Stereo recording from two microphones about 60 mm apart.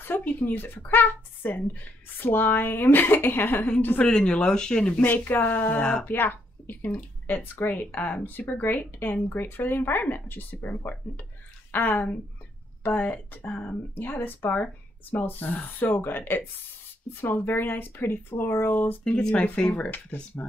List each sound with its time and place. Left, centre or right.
0.0 s a woman's voice: left
4.0 s speech: centre
5.0 s a woman's voice: left
19.1 s speech: left